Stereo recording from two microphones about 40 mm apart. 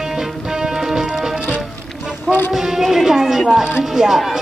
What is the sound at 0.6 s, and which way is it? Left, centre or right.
Music, centre.